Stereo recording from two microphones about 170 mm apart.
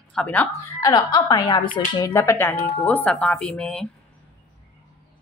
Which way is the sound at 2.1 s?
15° left (ahead or behind).